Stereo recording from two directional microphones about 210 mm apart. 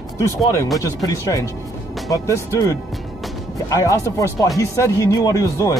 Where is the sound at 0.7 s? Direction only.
15° left (ahead or behind).